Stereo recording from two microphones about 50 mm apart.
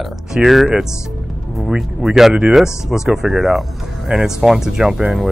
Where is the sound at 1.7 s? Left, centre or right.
Centre.